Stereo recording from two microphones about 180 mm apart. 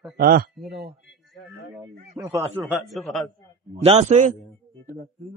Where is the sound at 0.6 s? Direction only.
Centre (ahead or behind).